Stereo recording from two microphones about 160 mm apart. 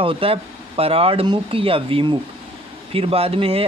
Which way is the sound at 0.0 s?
35° right (ahead or behind).